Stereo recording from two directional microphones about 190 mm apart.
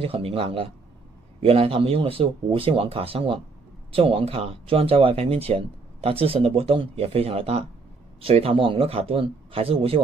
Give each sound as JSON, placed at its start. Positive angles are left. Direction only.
{"t": 0.0, "sound": "speech", "side_deg": -30}